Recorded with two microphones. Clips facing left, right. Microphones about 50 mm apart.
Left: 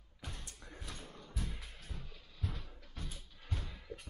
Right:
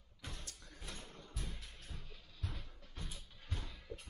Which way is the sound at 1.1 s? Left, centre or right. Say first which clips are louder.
Left 3 dB; centre.